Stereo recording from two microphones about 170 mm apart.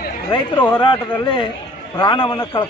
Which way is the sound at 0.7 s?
30° left (ahead or behind).